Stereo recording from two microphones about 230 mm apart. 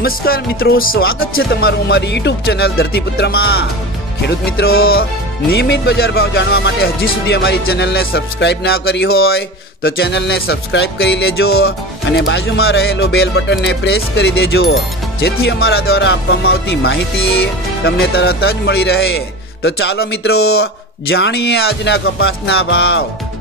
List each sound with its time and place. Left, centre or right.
0.0 s speech: left
4.3 s music: left
5.5 s speech: left